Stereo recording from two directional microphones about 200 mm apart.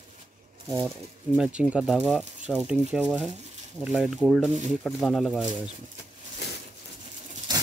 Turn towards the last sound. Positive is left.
turn(degrees=-20)  # may be behind; listen again after turning